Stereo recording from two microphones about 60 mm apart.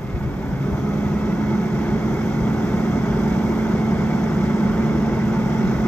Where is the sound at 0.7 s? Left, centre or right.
Left.